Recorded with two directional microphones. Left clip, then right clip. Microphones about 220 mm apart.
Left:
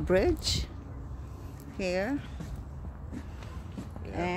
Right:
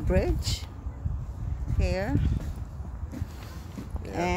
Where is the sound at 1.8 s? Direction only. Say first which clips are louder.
Left 1 dB; 20° left (ahead or behind).